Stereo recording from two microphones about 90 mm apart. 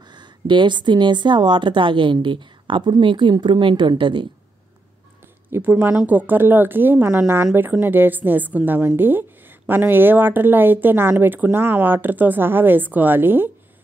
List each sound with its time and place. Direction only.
0.1 s a woman's voice: 60° right (ahead or behind)
5.5 s speech: 25° right (ahead or behind)